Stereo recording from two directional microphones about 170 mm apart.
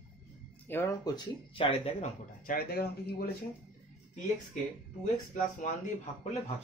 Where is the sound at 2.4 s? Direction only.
60° left (ahead or behind).